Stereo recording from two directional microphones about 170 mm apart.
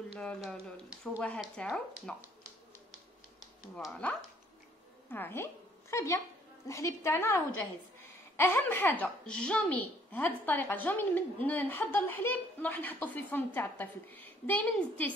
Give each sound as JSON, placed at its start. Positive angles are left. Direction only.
{"t": 0.2, "sound": "speech", "side_deg": 5}
{"t": 3.7, "sound": "a woman's voice", "side_deg": 5}